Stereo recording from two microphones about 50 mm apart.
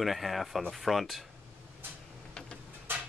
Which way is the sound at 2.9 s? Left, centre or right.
Right.